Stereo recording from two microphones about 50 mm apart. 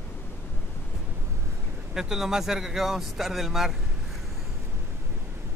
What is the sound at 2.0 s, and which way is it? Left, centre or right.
Speech, centre.